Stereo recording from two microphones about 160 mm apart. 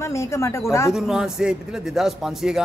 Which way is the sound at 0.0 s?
20° left (ahead or behind).